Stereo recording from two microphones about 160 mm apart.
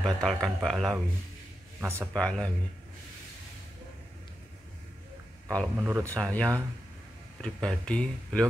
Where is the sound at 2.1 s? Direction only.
5° left (ahead or behind).